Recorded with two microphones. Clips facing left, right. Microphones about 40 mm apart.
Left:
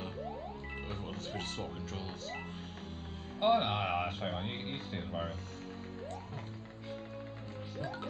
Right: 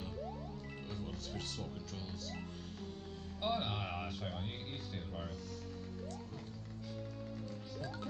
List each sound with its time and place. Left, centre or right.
0.8 s music: centre
3.3 s speech: left
4.1 s speech: centre
4.4 s speech: left
7.8 s speech: left